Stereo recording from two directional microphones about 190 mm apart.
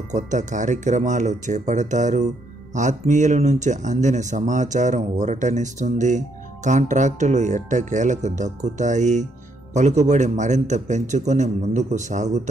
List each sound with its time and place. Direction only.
0.1 s speech: 40° right (ahead or behind)